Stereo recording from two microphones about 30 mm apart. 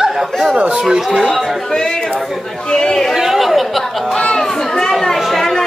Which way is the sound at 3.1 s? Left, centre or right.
Centre.